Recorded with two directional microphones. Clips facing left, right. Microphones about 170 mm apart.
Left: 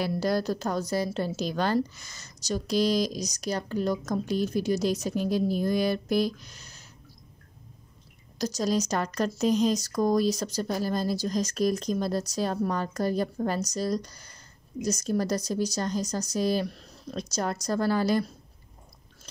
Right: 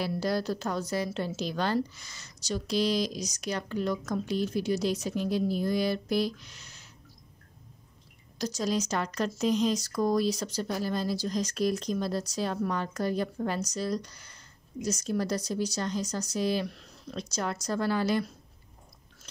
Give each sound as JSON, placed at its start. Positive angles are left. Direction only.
{"t": 0.0, "sound": "a woman's voice", "side_deg": 45}
{"t": 8.4, "sound": "speech", "side_deg": 40}